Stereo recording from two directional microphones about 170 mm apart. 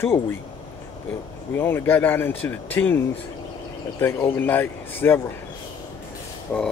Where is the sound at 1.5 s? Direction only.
15° left (ahead or behind).